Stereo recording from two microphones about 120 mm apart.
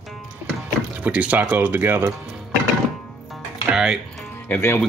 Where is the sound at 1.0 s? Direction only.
10° right (ahead or behind).